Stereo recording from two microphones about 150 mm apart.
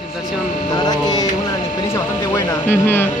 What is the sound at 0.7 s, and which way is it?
Speech, 25° left (ahead or behind).